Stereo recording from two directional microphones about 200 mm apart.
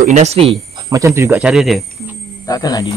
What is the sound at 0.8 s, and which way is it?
Speech, 15° right (ahead or behind).